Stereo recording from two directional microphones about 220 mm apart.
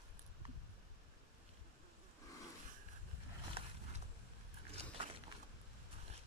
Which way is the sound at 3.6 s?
25° right (ahead or behind).